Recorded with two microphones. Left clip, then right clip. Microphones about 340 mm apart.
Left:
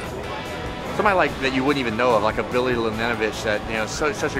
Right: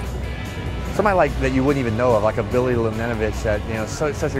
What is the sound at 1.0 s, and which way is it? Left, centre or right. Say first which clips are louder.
Speech: right 1 dB; right.